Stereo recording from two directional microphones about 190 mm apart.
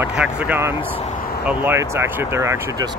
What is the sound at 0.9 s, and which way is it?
Speech, 35° left (ahead or behind).